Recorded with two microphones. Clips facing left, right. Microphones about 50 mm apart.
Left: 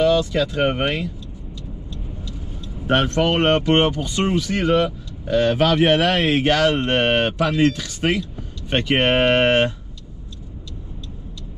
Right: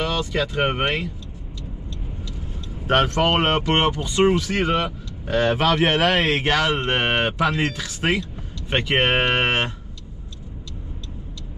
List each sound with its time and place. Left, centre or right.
0.0 s speech: centre
3.3 s speech: centre
5.6 s a man's voice: centre
6.7 s speech: centre